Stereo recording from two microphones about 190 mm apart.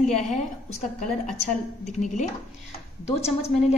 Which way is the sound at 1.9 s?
40° left (ahead or behind).